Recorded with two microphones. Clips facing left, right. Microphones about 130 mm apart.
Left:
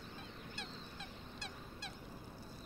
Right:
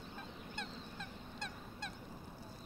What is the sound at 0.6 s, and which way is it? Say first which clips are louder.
Goose: right 5 dB; 50° right (ahead or behind).